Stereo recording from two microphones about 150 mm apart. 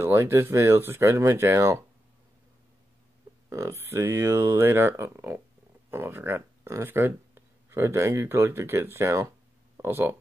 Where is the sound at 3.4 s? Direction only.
20° right (ahead or behind).